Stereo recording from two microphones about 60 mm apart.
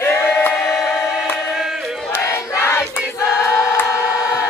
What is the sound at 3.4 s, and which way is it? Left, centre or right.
Choir, left.